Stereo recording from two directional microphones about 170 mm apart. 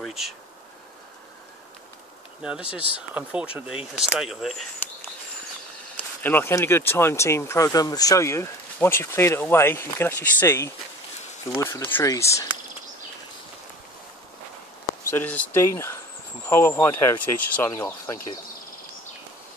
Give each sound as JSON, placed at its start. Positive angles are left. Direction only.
{"t": 0.0, "sound": "bee", "side_deg": 0}
{"t": 2.4, "sound": "speech", "side_deg": -5}
{"t": 5.9, "sound": "speech", "side_deg": 10}
{"t": 15.0, "sound": "speech", "side_deg": 15}